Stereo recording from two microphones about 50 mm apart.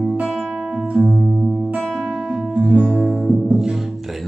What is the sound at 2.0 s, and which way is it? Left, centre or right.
Music, centre.